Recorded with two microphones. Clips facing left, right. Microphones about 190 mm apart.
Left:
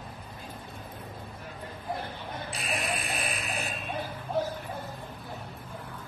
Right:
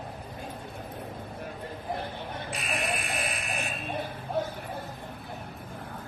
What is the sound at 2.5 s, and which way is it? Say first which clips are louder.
Fire alarm: right 1 dB; 35° left (ahead or behind).